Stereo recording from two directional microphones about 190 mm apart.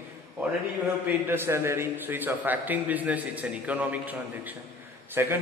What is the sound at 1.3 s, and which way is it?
A man's voice, 10° right (ahead or behind).